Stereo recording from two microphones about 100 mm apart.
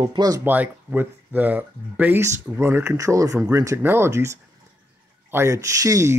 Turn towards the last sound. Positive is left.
turn(degrees=-35)  # may be behind; listen again after turning